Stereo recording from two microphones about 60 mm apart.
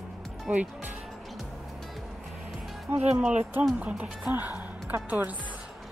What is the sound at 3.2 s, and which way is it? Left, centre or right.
A woman's voice, right.